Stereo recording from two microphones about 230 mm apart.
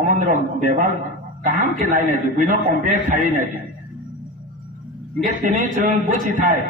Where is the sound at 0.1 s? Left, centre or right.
Right.